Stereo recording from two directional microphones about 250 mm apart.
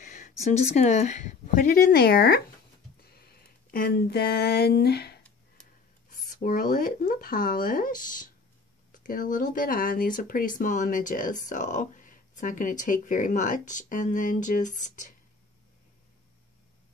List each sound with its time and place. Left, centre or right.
0.0 s speech: left